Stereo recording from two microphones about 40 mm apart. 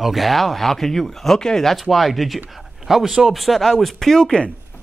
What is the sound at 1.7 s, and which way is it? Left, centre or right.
Speech, centre.